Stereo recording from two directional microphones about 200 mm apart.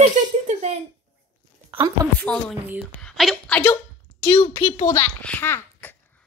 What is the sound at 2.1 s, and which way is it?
A woman's voice, 5° left (ahead or behind).